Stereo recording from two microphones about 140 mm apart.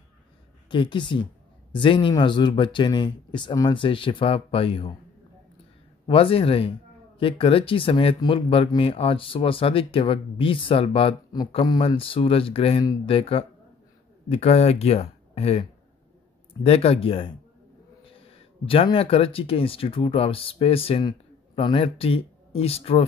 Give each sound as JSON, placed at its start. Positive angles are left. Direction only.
{"t": 0.7, "sound": "speech", "side_deg": 35}
{"t": 6.0, "sound": "speech", "side_deg": 40}
{"t": 12.0, "sound": "speech", "side_deg": 40}
{"t": 16.6, "sound": "speech", "side_deg": 45}
{"t": 18.7, "sound": "speech", "side_deg": 40}